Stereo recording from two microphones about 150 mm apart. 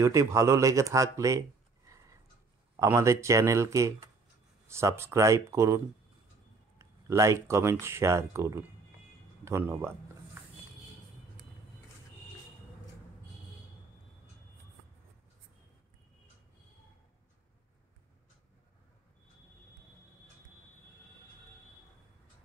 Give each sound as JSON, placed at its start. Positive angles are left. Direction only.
{"t": 0.0, "sound": "speech", "side_deg": -20}
{"t": 2.8, "sound": "speech", "side_deg": -20}
{"t": 6.8, "sound": "speech", "side_deg": -20}